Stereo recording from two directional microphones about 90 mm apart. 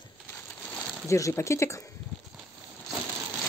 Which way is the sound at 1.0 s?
35° left (ahead or behind).